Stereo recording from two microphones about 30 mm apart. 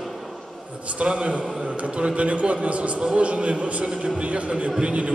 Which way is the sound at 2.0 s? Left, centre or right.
Right.